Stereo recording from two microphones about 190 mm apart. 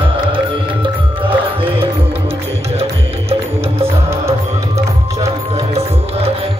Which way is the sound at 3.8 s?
15° right (ahead or behind).